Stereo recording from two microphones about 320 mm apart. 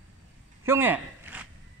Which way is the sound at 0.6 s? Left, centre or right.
Centre.